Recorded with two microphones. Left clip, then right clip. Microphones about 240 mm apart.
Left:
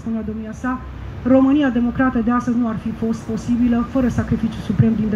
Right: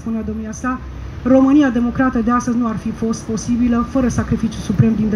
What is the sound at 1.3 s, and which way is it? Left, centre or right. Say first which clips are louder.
Speech: right 3 dB; centre.